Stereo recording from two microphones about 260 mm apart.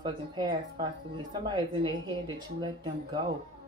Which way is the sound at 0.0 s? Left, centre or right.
Centre.